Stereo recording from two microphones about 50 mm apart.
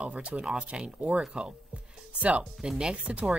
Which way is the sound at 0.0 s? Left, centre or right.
Right.